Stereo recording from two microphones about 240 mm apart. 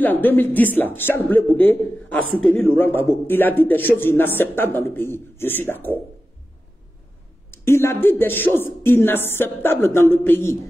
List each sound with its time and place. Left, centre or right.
0.0 s a man's voice: centre
7.5 s a man's voice: centre